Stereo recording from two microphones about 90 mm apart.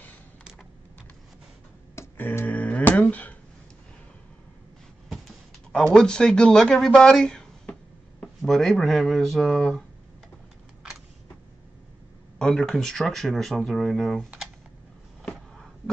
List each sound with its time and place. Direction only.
2.0 s a sound: 25° left (ahead or behind)
5.9 s speech: 10° left (ahead or behind)
12.4 s speech: 5° left (ahead or behind)